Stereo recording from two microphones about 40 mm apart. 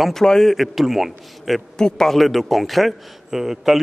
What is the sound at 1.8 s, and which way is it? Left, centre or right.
Speech, centre.